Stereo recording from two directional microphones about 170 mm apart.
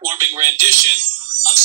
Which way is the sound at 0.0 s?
15° right (ahead or behind).